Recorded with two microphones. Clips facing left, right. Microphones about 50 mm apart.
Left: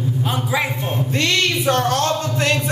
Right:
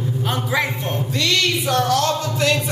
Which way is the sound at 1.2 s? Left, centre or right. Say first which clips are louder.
Left 1 dB; left.